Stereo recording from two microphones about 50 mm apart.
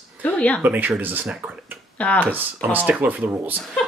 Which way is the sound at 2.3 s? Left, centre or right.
Right.